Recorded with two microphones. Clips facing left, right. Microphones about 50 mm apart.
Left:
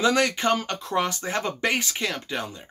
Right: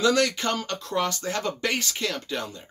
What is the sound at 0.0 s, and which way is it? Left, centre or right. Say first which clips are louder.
A man's voice: left 1 dB; left.